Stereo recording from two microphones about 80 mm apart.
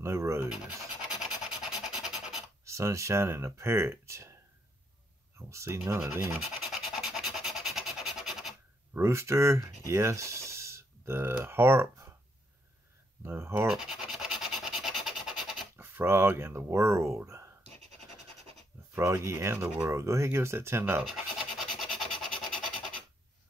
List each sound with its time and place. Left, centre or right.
0.0 s speech: right
1.2 s rub: centre
2.6 s speech: right
5.4 s speech: right
6.7 s rub: centre
8.9 s speech: right
13.2 s speech: right
13.7 s scratch: centre
15.7 s speech: right
18.9 s speech: right
21.0 s a sound: centre